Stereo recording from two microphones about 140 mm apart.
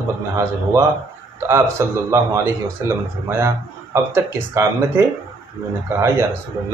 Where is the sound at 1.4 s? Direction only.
20° right (ahead or behind).